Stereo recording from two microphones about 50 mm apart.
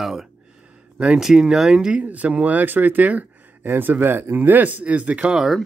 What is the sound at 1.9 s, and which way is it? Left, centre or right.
Speech, right.